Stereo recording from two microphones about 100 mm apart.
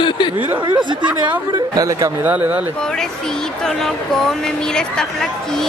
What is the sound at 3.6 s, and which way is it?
Speech, 5° left (ahead or behind).